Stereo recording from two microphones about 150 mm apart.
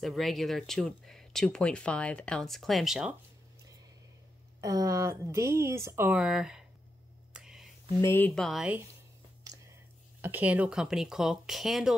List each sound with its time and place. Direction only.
0.0 s speech: centre (ahead or behind)
4.6 s speech: 25° right (ahead or behind); by 6.6 s 5° right (ahead or behind)
7.3 s a sound: 5° right (ahead or behind)
8.0 s speech: 15° left (ahead or behind)
8.4 s speech: centre (ahead or behind)
10.2 s speech: 10° right (ahead or behind)